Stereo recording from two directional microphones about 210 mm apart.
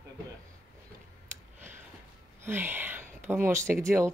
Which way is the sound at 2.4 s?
10° right (ahead or behind).